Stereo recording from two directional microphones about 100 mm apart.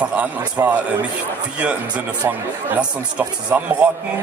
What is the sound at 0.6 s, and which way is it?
Speech, 30° right (ahead or behind).